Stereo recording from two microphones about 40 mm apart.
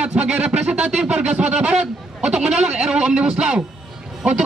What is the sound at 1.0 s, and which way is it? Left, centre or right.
A man's voice, right.